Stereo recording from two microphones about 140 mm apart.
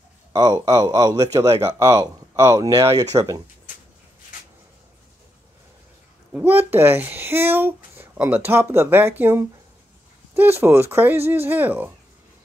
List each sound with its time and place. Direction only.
0.3 s speech: 25° right (ahead or behind)
6.3 s speech: 15° right (ahead or behind)